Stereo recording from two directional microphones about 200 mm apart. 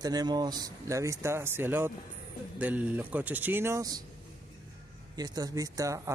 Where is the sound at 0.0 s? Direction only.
20° right (ahead or behind).